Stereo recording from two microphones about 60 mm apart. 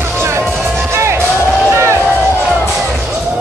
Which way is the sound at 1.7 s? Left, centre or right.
Right.